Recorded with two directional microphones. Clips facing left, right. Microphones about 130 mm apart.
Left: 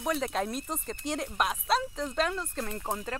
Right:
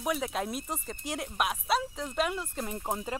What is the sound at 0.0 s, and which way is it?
Speech, 5° right (ahead or behind).